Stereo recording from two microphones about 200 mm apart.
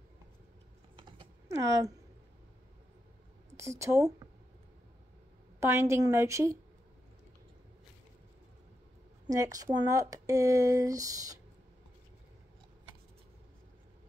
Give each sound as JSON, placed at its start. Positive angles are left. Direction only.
{"t": 0.9, "sound": "typing", "side_deg": -25}
{"t": 3.5, "sound": "speech", "side_deg": -15}
{"t": 5.6, "sound": "speech", "side_deg": -15}
{"t": 9.3, "sound": "speech", "side_deg": -15}